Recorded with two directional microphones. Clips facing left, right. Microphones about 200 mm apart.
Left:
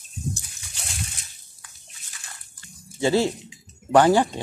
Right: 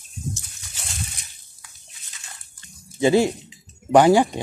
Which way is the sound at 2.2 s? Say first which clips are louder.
Even; 20° right (ahead or behind).